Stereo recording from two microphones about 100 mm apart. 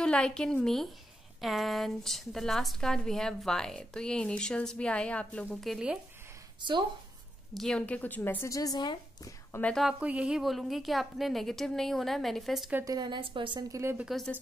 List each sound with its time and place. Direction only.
0.0 s a woman's voice: 10° left (ahead or behind)
5.6 s a woman's voice: 5° right (ahead or behind)
7.5 s speech: 5° left (ahead or behind); by 9.3 s 45° left (ahead or behind)
9.6 s speech: 20° left (ahead or behind)
9.9 s a woman's voice: 15° right (ahead or behind)
12.8 s a woman's voice: 45° right (ahead or behind)
13.7 s a woman's voice: 30° right (ahead or behind)
14.0 s a woman's voice: centre (ahead or behind)